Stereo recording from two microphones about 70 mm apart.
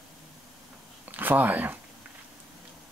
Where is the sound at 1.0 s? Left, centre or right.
Right.